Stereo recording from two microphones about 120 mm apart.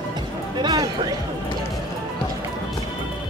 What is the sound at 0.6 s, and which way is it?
Speech, 35° right (ahead or behind).